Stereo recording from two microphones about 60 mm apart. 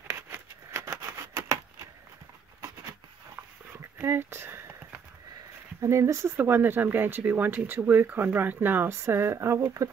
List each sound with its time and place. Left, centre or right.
0.1 s scissors: right
3.7 s a sound: right
5.8 s speech: right
6.3 s speech: right